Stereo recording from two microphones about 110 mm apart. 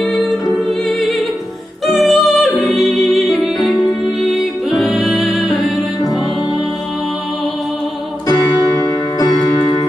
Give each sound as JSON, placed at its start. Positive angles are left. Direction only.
{"t": 0.0, "sound": "music", "side_deg": 0}
{"t": 8.3, "sound": "music", "side_deg": 35}